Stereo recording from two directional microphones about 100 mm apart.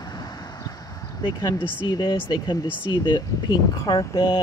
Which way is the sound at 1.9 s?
50° left (ahead or behind).